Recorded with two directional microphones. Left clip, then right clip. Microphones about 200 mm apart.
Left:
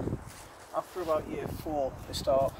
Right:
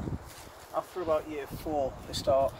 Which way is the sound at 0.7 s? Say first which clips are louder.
Right 1 dB; 5° right (ahead or behind).